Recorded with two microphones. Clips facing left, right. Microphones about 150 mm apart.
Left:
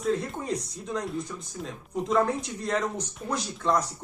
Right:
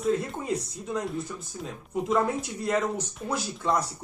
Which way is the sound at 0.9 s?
5° right (ahead or behind).